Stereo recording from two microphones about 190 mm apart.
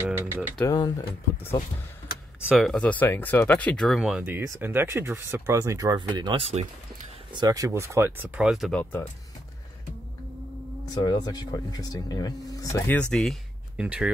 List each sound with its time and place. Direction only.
0.7 s speech: 20° left (ahead or behind)
2.4 s speech: centre (ahead or behind); by 6.6 s 30° right (ahead or behind)
7.3 s speech: 20° right (ahead or behind); by 9.1 s 5° left (ahead or behind)
10.9 s speech: 20° left (ahead or behind); by 14.1 s 5° right (ahead or behind)